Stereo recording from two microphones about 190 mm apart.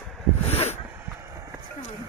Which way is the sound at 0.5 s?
35° left (ahead or behind).